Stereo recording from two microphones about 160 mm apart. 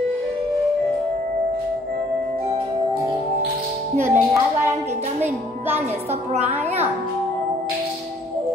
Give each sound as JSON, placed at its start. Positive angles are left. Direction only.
{"t": 4.0, "sound": "speech", "side_deg": -15}